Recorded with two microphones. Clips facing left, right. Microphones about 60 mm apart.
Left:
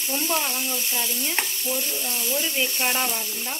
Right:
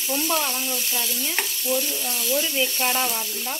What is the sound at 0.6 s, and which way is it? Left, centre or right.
Sizzle, centre.